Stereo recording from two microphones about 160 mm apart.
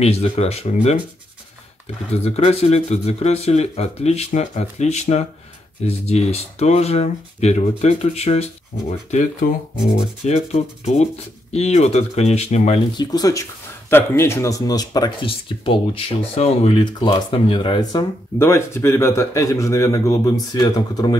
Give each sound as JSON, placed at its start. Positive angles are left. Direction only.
{"t": 0.0, "sound": "speech", "side_deg": 40}
{"t": 2.2, "sound": "speech", "side_deg": 40}
{"t": 9.8, "sound": "speech", "side_deg": 40}
{"t": 12.9, "sound": "speech", "side_deg": 25}
{"t": 18.4, "sound": "speech", "side_deg": 15}